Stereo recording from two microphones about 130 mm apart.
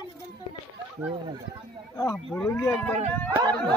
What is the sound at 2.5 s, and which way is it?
Speech, 15° left (ahead or behind).